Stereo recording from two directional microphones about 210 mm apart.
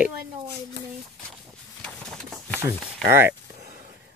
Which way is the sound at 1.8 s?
5° left (ahead or behind).